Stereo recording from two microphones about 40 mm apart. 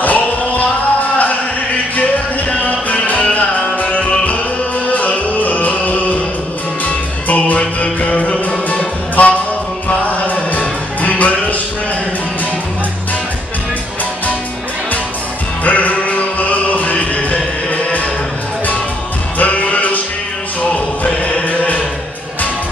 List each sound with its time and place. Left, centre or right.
0.0 s music: left
2.5 s music: left
15.6 s music: left
19.3 s music: left